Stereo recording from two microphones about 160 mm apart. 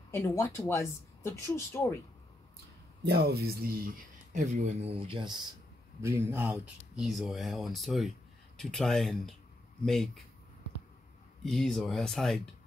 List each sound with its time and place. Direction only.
0.1 s speech: 20° left (ahead or behind)
3.0 s speech: 90° right; by 5.4 s 30° right (ahead or behind)
5.9 s speech: 15° right (ahead or behind); by 10.2 s centre (ahead or behind)
11.4 s speech: centre (ahead or behind)